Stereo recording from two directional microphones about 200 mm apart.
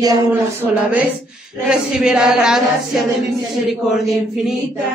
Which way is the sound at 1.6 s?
5° right (ahead or behind).